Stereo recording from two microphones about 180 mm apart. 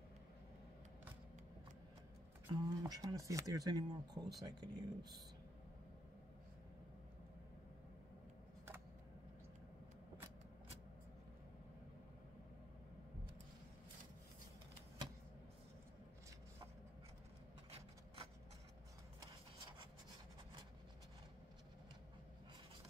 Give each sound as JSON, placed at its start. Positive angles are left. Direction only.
{"t": 2.5, "sound": "speech", "side_deg": -20}
{"t": 17.6, "sound": "rub", "side_deg": -30}